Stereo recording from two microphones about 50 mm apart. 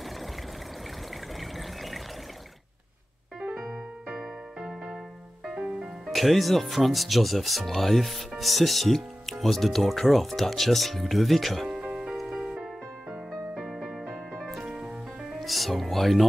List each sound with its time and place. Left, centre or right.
1.4 s water: centre
4.1 s music: centre
6.0 s speech: centre
11.8 s music: centre
15.3 s music: centre